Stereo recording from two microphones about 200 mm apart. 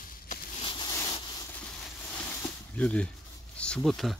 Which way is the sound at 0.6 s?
25° left (ahead or behind).